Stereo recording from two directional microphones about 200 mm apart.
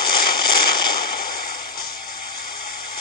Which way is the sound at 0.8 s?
50° left (ahead or behind).